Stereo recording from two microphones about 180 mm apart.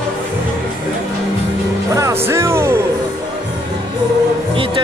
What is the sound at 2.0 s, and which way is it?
Music, 15° right (ahead or behind).